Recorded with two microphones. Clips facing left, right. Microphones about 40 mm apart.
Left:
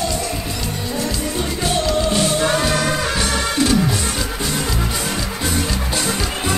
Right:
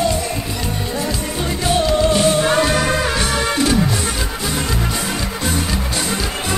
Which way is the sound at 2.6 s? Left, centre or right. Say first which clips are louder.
Right 3 dB; right.